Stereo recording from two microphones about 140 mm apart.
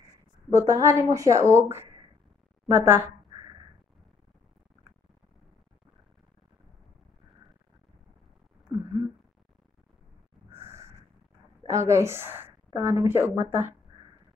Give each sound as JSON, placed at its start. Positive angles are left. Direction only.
{"t": 0.5, "sound": "a woman's voice", "side_deg": -20}
{"t": 8.7, "sound": "a sound", "side_deg": -25}
{"t": 11.6, "sound": "a woman's voice", "side_deg": -20}